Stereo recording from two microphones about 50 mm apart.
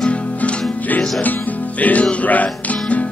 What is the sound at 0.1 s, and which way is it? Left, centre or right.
Music, left.